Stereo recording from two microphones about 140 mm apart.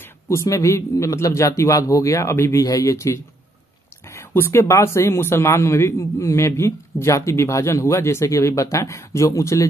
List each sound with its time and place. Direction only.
0.3 s speech: 20° left (ahead or behind)